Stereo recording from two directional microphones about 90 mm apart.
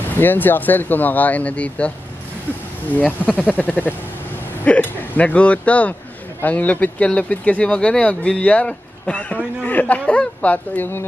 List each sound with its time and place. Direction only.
0.2 s speech: 20° left (ahead or behind)
3.0 s speech: 15° left (ahead or behind)